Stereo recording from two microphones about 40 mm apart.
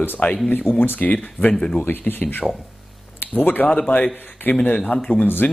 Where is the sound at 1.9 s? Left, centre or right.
Left.